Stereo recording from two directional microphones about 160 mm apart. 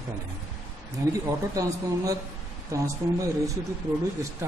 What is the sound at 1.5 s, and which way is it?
A man's voice, 20° right (ahead or behind).